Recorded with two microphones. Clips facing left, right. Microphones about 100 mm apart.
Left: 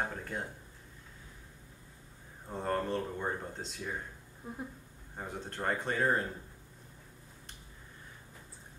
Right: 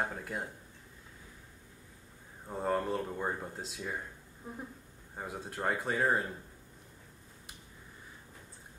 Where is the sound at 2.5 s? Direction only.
5° right (ahead or behind).